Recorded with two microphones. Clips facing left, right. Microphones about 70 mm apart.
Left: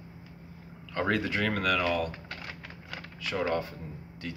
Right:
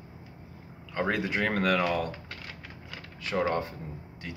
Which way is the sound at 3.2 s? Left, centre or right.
Right.